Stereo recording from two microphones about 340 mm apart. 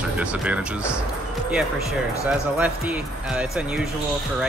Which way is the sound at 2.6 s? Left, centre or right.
Centre.